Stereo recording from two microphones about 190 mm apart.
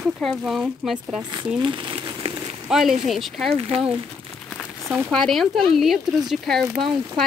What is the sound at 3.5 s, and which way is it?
Speech, 30° right (ahead or behind).